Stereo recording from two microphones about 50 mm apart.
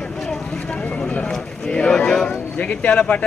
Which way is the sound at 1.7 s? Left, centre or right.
Left.